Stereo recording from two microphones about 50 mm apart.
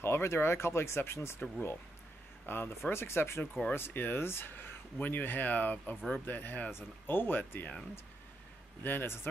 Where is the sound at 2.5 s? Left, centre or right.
Left.